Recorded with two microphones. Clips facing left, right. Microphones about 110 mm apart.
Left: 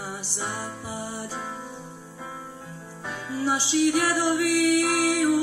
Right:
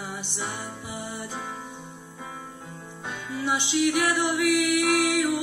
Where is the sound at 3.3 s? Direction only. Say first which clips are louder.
Left 2 dB; 35° left (ahead or behind).